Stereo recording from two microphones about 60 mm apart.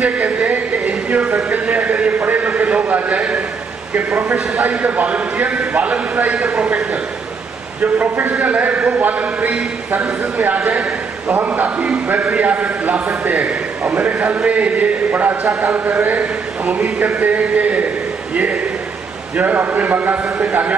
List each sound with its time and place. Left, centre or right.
0.0 s a man's voice: right
3.9 s a man's voice: right
7.8 s a man's voice: right
10.7 s a man's voice: centre
11.4 s a man's voice: right
16.2 s a man's voice: right
19.3 s a man's voice: right